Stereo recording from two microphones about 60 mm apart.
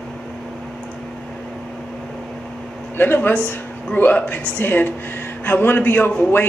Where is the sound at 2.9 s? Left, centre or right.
Left.